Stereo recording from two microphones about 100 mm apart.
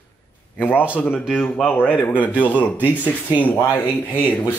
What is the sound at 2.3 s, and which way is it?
Speech, 15° left (ahead or behind).